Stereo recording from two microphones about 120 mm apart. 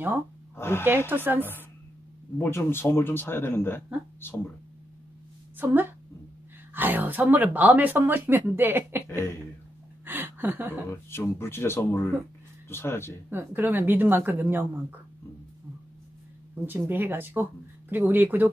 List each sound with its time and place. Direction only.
0.6 s speech: 20° left (ahead or behind)
0.8 s speech: 15° right (ahead or behind)
2.3 s speech: 20° left (ahead or behind)
5.6 s speech: 15° right (ahead or behind)
10.0 s a sound: 15° right (ahead or behind)
10.9 s speech: 20° left (ahead or behind)
13.3 s speech: 15° right (ahead or behind)
16.6 s speech: 15° right (ahead or behind)